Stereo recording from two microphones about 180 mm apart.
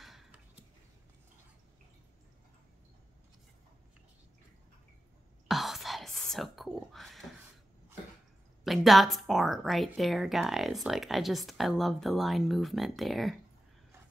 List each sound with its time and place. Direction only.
0.0 s a sound: centre (ahead or behind)
5.5 s whispering: centre (ahead or behind)
8.6 s a woman's voice: centre (ahead or behind)